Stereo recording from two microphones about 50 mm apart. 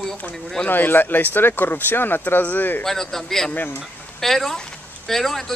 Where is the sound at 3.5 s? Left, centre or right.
Left.